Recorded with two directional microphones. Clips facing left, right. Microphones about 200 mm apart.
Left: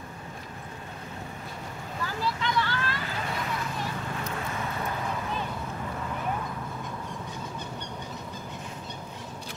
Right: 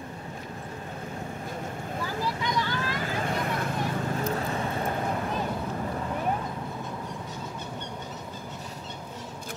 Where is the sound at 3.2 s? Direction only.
50° right (ahead or behind).